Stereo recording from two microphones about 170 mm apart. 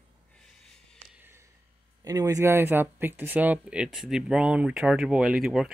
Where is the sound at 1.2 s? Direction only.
15° right (ahead or behind).